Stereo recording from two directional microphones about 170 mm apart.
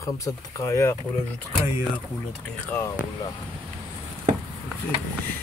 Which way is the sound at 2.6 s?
15° left (ahead or behind).